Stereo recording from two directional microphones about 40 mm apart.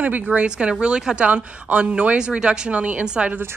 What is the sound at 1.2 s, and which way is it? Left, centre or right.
Speech, right.